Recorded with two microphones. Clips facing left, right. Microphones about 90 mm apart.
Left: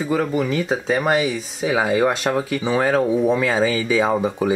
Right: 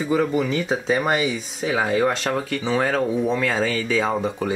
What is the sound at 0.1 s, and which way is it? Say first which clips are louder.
Speech: even; centre (ahead or behind).